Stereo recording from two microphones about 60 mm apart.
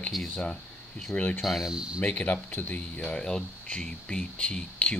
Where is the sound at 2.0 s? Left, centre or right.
Left.